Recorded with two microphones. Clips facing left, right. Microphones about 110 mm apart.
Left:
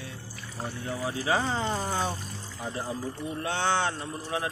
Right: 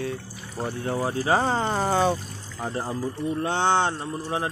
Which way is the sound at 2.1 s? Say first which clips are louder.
Right 8 dB; 70° right (ahead or behind).